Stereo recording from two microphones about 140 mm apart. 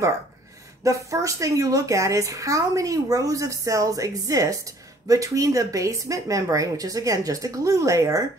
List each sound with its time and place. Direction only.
0.8 s speech: 20° right (ahead or behind)